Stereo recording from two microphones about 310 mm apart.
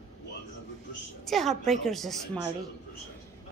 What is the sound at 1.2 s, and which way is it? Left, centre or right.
Speech, centre.